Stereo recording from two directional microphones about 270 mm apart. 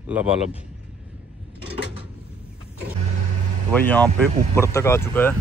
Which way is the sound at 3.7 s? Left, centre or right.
Centre.